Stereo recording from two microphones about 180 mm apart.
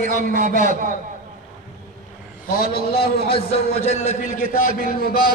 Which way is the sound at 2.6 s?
55° left (ahead or behind).